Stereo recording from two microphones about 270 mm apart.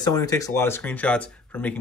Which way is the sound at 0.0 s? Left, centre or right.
Centre.